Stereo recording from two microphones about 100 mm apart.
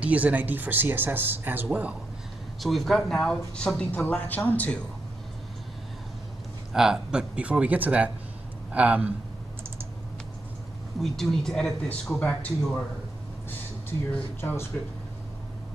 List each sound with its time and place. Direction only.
0.0 s speech: 15° right (ahead or behind)
2.6 s speech: centre (ahead or behind)
6.7 s speech: 5° right (ahead or behind)
11.0 s speech: 5° left (ahead or behind)
14.4 s speech: 25° left (ahead or behind)